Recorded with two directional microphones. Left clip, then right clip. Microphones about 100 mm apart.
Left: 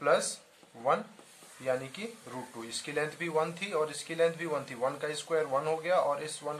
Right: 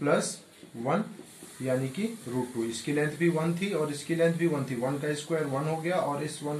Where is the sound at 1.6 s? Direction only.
30° left (ahead or behind).